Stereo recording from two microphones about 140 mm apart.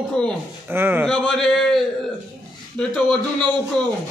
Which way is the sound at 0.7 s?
15° right (ahead or behind).